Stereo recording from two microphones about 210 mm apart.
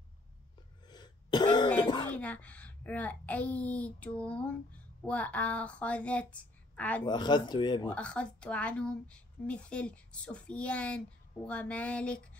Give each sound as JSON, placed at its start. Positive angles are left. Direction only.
{"t": 0.8, "sound": "cough", "side_deg": 20}
{"t": 2.0, "sound": "speech", "side_deg": 5}
{"t": 7.1, "sound": "speech", "side_deg": 20}
{"t": 7.9, "sound": "speech", "side_deg": 5}